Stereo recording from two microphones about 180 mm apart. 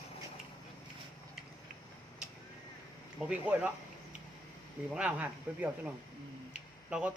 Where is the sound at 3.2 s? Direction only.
5° right (ahead or behind).